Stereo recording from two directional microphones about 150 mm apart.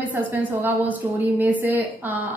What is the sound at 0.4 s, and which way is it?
A woman's voice, 10° right (ahead or behind).